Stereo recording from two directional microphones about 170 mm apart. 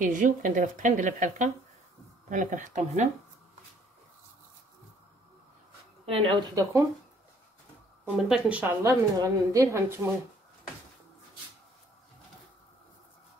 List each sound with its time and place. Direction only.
0.0 s speech: 50° right (ahead or behind)
6.0 s speech: 35° right (ahead or behind)
8.0 s a woman's voice: 5° right (ahead or behind)